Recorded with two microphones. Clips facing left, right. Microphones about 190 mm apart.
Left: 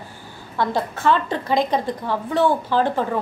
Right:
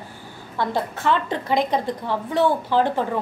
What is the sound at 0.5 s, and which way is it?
A woman's voice, 20° right (ahead or behind).